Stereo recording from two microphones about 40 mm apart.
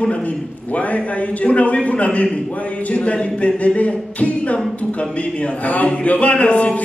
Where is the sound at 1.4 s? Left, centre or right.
Left.